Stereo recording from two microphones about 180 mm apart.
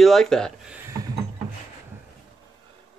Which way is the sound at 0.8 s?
15° right (ahead or behind).